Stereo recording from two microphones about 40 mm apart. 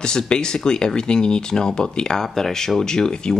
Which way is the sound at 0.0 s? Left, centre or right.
Left.